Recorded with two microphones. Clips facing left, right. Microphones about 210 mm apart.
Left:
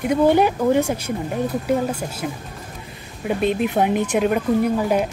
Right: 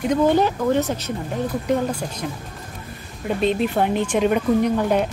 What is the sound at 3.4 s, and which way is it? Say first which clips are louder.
Speech: even; 10° left (ahead or behind).